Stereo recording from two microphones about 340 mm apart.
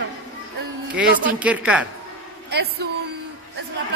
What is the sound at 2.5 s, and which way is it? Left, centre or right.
Speech, right.